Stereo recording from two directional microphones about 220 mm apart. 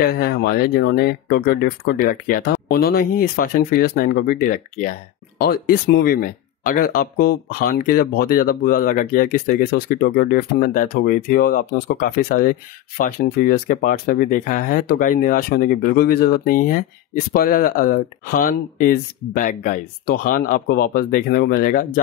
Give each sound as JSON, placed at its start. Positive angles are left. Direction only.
{"t": 0.0, "sound": "speech", "side_deg": 45}